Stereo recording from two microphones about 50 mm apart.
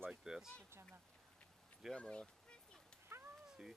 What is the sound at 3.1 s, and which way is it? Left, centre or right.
Cat, right.